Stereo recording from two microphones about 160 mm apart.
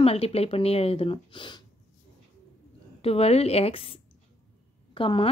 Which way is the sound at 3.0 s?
40° left (ahead or behind).